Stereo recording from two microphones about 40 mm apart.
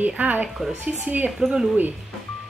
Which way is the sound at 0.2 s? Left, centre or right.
Right.